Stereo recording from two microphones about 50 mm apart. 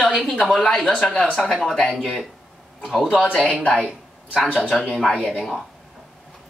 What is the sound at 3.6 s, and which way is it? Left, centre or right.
Speech, left.